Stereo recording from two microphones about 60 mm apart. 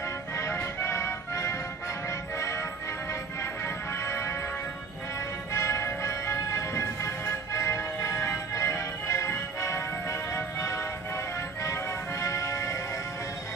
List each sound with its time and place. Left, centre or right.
0.7 s music: left
4.0 s music: left
5.5 s music: left